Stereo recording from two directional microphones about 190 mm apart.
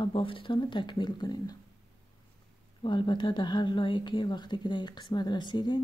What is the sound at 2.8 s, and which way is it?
Speech, 25° left (ahead or behind).